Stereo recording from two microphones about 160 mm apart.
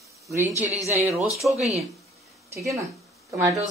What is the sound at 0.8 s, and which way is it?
Speech, 15° right (ahead or behind).